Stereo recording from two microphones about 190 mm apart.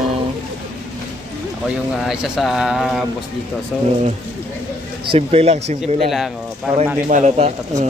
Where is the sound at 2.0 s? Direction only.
Centre (ahead or behind).